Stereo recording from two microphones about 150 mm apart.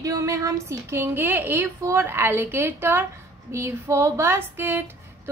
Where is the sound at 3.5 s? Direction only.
20° right (ahead or behind).